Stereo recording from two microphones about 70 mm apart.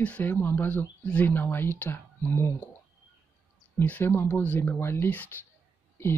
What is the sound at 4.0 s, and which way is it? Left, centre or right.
Speech, left.